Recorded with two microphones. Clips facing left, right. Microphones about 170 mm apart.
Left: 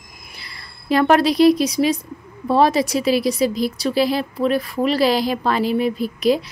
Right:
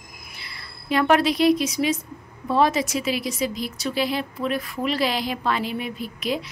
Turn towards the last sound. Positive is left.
turn(degrees=35)  # may be behind; listen again after turning